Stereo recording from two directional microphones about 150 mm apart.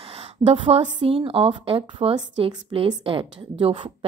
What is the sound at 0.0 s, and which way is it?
A woman's voice, 45° right (ahead or behind).